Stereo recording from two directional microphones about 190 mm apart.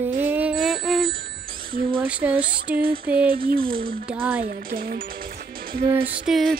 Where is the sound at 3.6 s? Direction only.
25° right (ahead or behind).